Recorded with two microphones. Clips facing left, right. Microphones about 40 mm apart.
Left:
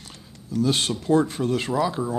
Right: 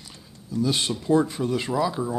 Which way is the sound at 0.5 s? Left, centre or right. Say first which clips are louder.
Left 2 dB; left.